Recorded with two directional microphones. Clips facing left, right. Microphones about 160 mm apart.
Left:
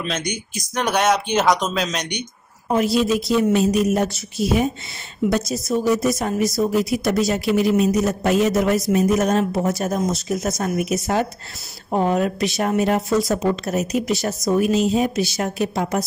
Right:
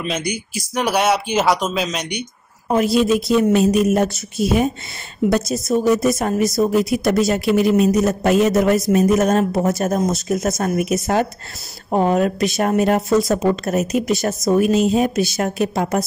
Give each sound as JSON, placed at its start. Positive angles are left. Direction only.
{"t": 0.0, "sound": "speech", "side_deg": -10}
{"t": 2.7, "sound": "a woman's voice", "side_deg": -55}